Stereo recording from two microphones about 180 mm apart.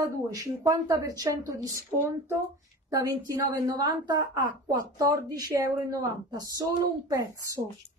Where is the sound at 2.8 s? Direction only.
20° right (ahead or behind).